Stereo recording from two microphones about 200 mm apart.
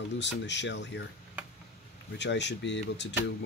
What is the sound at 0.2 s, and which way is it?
Speech, 60° left (ahead or behind).